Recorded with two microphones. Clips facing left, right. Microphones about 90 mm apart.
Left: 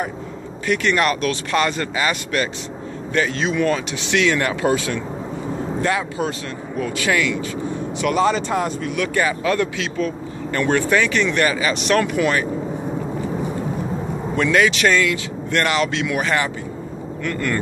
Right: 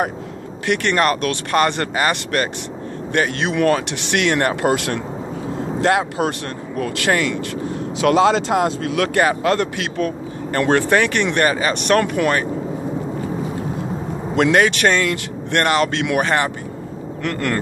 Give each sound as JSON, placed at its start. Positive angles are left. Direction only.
{"t": 0.9, "sound": "speech", "side_deg": -45}
{"t": 4.6, "sound": "speech", "side_deg": -70}
{"t": 6.8, "sound": "speech", "side_deg": -50}
{"t": 8.0, "sound": "speech", "side_deg": -90}
{"t": 14.5, "sound": "speech", "side_deg": -50}
{"t": 17.2, "sound": "speech", "side_deg": -65}